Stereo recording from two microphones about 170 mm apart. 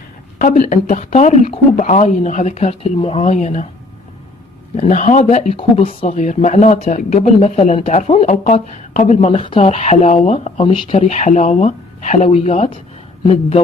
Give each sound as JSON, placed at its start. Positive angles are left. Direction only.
{"t": 0.4, "sound": "speech", "side_deg": 45}
{"t": 4.7, "sound": "speech", "side_deg": 45}
{"t": 5.6, "sound": "speech", "side_deg": 35}